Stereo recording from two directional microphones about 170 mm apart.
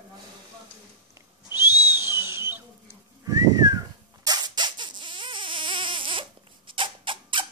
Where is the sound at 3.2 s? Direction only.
20° right (ahead or behind).